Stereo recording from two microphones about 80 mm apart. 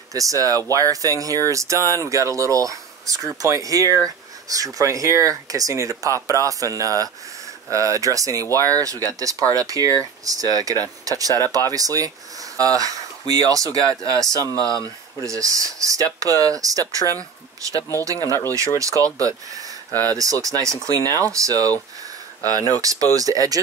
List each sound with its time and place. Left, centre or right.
0.1 s speech: right
8.4 s speech: left
8.8 s speech: right
19.9 s speech: left
20.2 s speech: right